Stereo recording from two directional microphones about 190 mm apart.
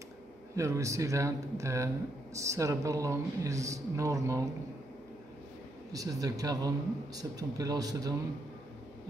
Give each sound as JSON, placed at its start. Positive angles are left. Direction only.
{"t": 0.6, "sound": "speech", "side_deg": -15}
{"t": 5.9, "sound": "speech", "side_deg": -20}